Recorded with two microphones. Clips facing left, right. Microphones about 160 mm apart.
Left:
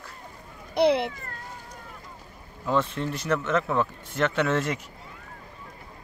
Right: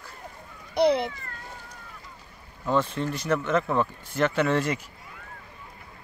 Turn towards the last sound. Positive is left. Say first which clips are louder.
# right 1 dB
turn(degrees=0)  # may be behind; listen again after turning